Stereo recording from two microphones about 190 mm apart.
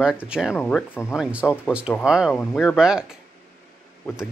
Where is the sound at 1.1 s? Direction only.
5° right (ahead or behind).